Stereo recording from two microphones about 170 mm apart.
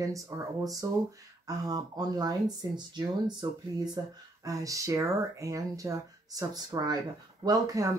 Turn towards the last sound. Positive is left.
turn(degrees=-20)  # may be behind; listen again after turning